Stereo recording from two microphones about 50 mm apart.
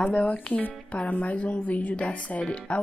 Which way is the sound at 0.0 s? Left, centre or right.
Left.